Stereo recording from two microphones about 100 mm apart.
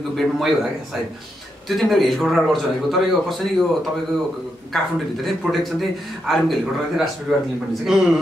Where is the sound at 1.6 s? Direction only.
Centre (ahead or behind).